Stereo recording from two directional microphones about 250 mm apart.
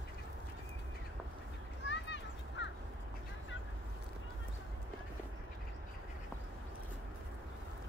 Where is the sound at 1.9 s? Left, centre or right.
Left.